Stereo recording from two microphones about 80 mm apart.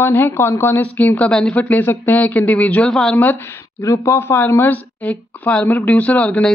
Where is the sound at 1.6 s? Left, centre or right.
Left; by 3.2 s centre.